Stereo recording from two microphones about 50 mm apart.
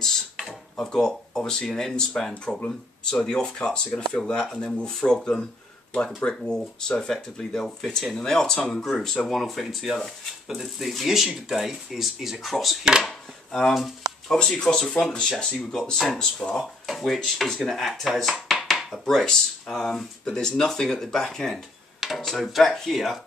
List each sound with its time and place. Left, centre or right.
0.0 s a sound: centre
0.7 s speech: centre
13.0 s chopping: centre
14.3 s speech: centre
18.6 s dishes: centre
19.2 s speech: centre